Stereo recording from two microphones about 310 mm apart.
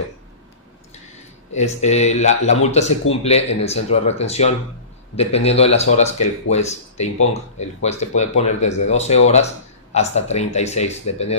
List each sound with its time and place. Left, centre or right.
1.5 s speech: left